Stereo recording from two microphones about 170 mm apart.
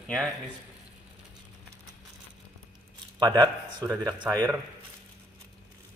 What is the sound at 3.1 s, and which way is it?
Speech, 25° right (ahead or behind).